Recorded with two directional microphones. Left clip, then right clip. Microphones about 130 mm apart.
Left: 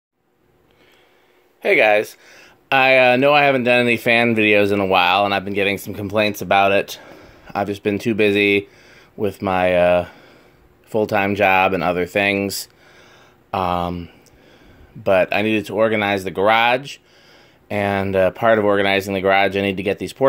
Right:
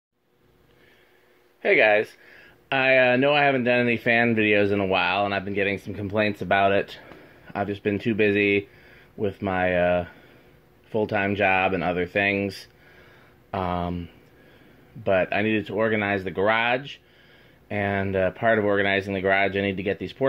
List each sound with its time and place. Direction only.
1.6 s speech: 30° left (ahead or behind)